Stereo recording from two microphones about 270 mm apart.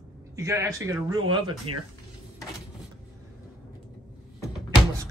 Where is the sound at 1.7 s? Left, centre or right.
Right.